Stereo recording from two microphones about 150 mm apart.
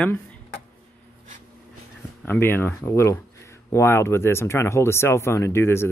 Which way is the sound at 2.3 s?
15° left (ahead or behind).